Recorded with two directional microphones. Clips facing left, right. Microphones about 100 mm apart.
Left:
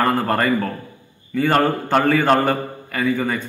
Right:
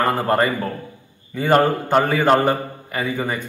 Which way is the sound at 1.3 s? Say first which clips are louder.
Right 1 dB; 20° right (ahead or behind).